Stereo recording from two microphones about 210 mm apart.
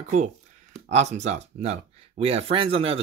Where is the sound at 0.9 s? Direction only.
35° right (ahead or behind).